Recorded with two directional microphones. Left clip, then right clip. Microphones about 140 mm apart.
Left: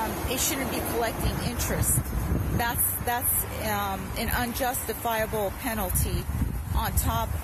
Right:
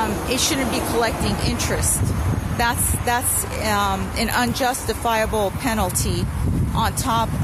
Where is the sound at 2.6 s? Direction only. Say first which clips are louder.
Right 9 dB; 20° right (ahead or behind).